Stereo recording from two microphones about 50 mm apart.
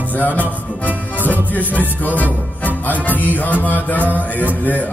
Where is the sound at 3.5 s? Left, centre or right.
Left.